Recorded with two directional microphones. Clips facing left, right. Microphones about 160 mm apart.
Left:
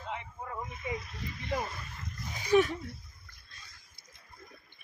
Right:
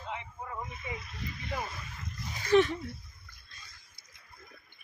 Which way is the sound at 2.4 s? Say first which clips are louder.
Right 1 dB; 10° left (ahead or behind).